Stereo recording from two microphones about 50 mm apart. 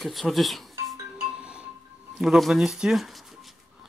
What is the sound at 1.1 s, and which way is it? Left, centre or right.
Music, centre.